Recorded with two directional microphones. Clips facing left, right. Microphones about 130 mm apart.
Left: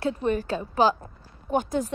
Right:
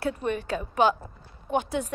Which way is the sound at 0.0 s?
35° left (ahead or behind).